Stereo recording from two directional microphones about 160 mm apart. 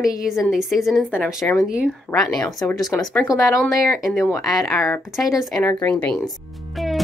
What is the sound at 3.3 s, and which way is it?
A woman's voice, 20° left (ahead or behind).